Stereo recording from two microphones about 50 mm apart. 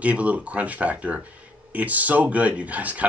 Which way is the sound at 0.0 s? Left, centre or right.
Right.